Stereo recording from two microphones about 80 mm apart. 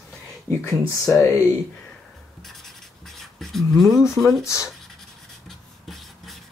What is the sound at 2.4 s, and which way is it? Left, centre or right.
Writing, centre.